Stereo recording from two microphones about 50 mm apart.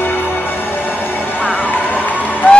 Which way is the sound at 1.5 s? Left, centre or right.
Left.